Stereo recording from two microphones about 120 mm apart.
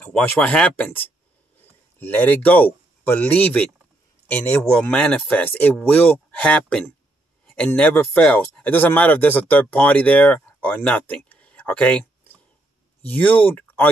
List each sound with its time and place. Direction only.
0.0 s speech: 10° left (ahead or behind)
10.7 s a sound: 5° left (ahead or behind)
13.0 s speech: 15° left (ahead or behind)